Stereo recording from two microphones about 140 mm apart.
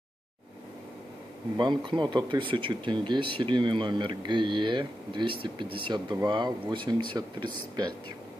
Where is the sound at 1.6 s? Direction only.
35° right (ahead or behind).